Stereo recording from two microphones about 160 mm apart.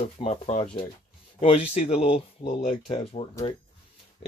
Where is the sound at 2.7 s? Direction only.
35° left (ahead or behind).